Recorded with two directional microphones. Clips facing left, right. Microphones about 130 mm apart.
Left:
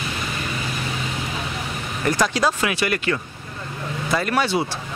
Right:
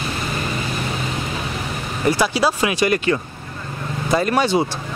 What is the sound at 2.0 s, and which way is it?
Speech, 10° right (ahead or behind).